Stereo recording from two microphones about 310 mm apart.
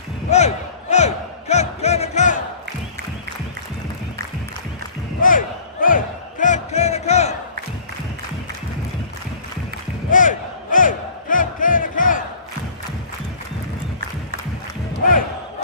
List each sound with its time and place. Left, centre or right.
0.3 s music: left
5.2 s battle cry: left
10.1 s battle cry: left